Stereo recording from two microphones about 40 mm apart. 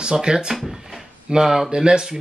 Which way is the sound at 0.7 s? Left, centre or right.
Centre.